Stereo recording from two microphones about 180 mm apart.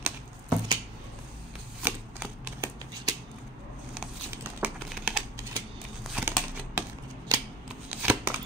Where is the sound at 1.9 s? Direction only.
10° right (ahead or behind).